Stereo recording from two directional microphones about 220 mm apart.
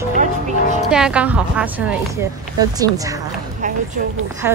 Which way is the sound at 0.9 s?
5° right (ahead or behind).